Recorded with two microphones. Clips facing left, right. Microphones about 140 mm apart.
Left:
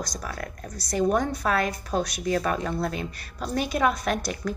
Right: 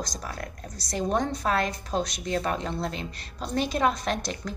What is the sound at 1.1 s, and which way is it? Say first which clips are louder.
Speech: even; 25° right (ahead or behind).